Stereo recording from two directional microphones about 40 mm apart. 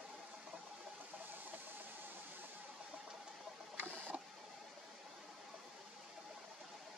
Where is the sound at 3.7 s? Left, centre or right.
Right.